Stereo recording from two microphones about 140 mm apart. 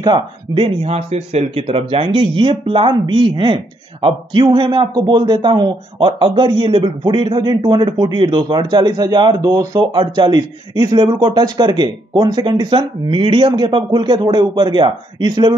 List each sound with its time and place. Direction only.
0.0 s speech: 35° right (ahead or behind)